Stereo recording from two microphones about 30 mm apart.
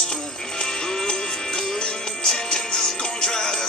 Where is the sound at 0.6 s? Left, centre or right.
Left.